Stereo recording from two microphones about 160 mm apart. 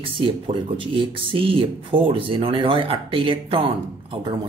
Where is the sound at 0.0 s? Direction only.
35° right (ahead or behind).